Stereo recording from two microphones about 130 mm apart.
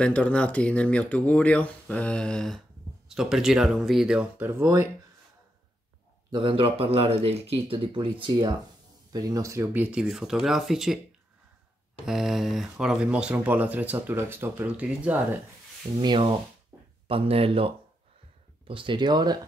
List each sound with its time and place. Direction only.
0.0 s speech: 10° left (ahead or behind); by 4.5 s 5° right (ahead or behind)
4.5 s speech: 20° right (ahead or behind)
6.3 s speech: 40° right (ahead or behind)
9.1 s speech: 25° right (ahead or behind)
9.8 s speech: 5° right (ahead or behind)
12.1 s speech: 5° right (ahead or behind)
16.0 s speech: 40° right (ahead or behind)
16.7 s a sound: 20° right (ahead or behind)
17.1 s speech: 45° right (ahead or behind)